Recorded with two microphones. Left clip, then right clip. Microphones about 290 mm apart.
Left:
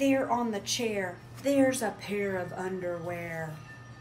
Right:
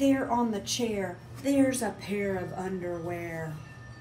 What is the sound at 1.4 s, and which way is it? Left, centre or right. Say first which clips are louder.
Speech: left 1 dB; centre.